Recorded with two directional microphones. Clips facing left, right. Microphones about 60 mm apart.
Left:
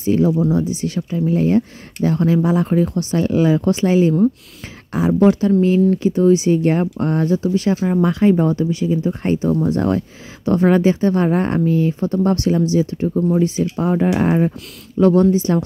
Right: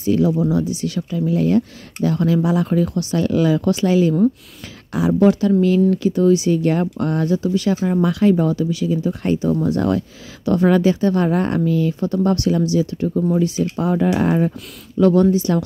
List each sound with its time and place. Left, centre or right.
0.0 s speech: left